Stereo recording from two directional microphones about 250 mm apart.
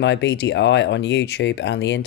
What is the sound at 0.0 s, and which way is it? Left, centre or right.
Speech, left.